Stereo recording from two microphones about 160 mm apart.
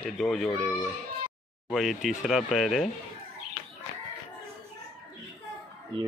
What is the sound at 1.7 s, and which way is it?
Speech, centre (ahead or behind).